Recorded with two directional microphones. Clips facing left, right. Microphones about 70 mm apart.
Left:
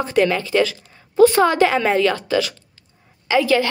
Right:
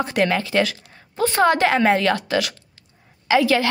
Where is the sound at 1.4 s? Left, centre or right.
Right.